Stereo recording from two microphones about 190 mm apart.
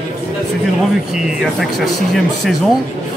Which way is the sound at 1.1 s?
Centre (ahead or behind).